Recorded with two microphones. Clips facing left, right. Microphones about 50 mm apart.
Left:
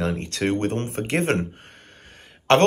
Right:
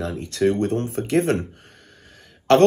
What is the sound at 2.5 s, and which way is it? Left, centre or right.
Speech, left.